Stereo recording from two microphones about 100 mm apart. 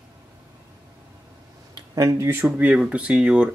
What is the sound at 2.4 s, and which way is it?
Speech, 10° right (ahead or behind).